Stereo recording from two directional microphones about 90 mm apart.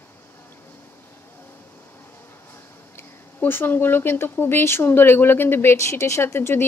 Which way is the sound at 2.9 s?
25° left (ahead or behind).